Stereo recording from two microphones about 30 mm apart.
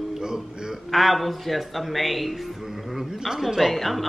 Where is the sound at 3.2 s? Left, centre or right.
Centre.